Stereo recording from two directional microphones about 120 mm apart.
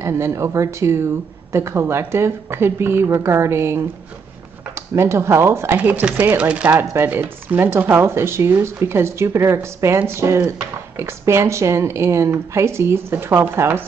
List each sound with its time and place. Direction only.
0.0 s speech: 25° right (ahead or behind)